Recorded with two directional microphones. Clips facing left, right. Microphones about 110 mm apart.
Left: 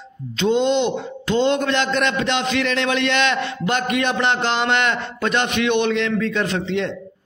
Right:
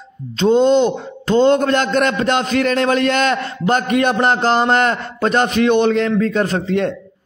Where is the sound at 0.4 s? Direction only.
45° right (ahead or behind).